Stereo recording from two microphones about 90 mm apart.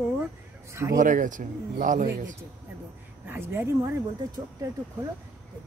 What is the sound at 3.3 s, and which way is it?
Speech, 25° right (ahead or behind).